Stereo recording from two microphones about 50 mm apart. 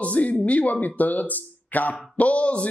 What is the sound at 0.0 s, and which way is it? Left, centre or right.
Speech, left.